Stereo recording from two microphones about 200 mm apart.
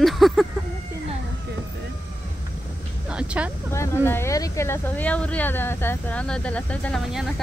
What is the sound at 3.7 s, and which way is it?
Speech, 15° left (ahead or behind).